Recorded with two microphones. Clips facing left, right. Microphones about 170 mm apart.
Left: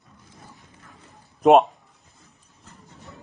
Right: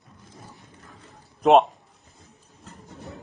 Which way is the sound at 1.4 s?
Centre (ahead or behind).